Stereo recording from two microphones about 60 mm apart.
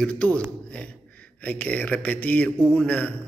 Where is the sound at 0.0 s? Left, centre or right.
Left.